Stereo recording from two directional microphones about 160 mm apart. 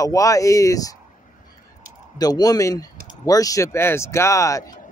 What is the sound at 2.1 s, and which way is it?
Speech, 25° left (ahead or behind).